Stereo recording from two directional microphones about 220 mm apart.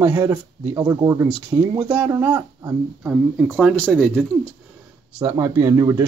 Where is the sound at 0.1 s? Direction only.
15° right (ahead or behind); by 4.3 s 5° left (ahead or behind).